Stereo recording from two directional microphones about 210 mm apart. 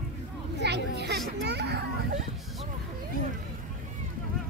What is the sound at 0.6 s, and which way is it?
Children playing, 55° right (ahead or behind).